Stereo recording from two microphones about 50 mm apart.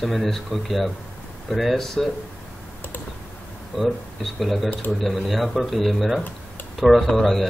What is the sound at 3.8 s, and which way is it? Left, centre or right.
Speech, centre.